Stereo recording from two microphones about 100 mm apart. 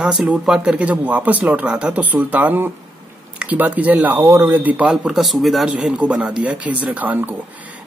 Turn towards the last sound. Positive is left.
turn(degrees=-15)  # may be behind; listen again after turning